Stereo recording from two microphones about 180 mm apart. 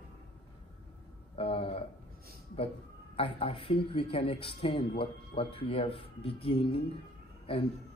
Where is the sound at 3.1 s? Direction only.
30° left (ahead or behind).